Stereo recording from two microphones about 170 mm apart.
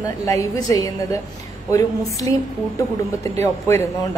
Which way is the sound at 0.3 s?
20° left (ahead or behind).